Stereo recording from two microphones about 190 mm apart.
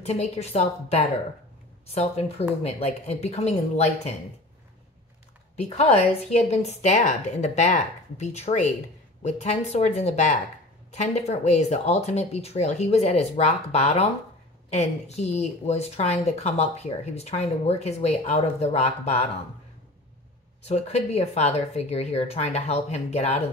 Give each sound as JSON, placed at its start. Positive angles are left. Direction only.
{"t": 0.0, "sound": "a woman's voice", "side_deg": 35}
{"t": 5.6, "sound": "a woman's voice", "side_deg": 35}
{"t": 20.6, "sound": "a woman's voice", "side_deg": 35}